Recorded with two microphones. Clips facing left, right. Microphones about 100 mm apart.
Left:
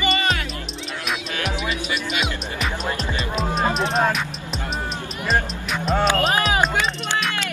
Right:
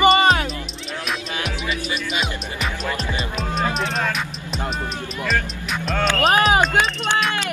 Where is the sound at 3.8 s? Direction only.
35° left (ahead or behind).